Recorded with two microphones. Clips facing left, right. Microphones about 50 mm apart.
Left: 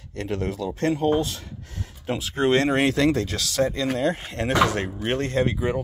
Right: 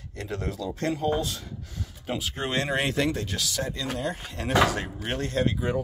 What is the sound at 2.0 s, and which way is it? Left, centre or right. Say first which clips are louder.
Speech: left 8 dB; left.